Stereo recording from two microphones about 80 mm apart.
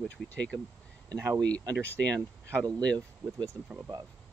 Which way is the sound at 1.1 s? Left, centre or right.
Right.